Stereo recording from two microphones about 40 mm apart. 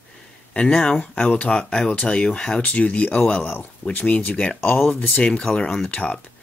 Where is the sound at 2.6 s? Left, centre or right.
Left.